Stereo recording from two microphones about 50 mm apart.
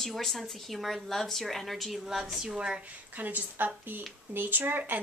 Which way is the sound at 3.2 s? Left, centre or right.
Right.